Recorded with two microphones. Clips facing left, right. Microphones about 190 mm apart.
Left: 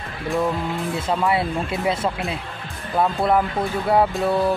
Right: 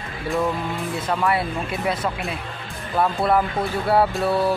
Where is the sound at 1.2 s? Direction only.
25° left (ahead or behind).